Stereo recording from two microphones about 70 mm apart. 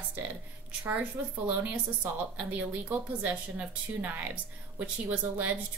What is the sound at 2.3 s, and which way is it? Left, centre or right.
Speech, right.